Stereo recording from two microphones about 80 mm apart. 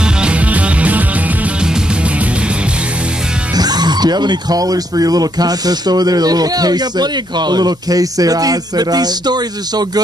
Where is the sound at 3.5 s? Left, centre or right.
Right.